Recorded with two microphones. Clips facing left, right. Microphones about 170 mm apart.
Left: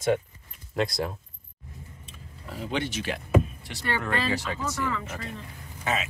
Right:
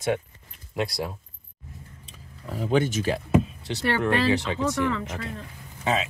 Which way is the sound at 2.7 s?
45° right (ahead or behind).